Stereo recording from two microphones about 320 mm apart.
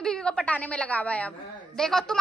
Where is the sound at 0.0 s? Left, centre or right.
Centre.